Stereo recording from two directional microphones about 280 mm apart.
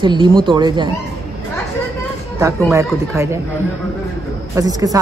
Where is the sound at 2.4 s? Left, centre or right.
Centre.